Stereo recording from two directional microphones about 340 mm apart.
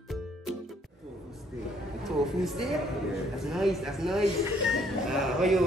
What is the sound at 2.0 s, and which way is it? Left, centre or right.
Speech, centre.